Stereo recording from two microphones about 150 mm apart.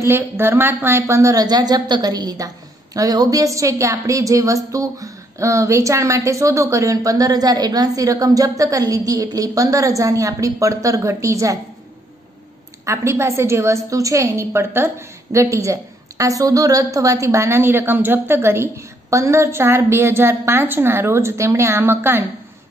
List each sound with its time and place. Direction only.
0.1 s a woman's voice: 15° right (ahead or behind)
12.8 s a woman's voice: 20° right (ahead or behind)